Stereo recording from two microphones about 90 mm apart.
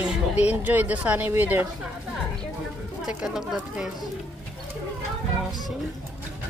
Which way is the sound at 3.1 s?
10° right (ahead or behind).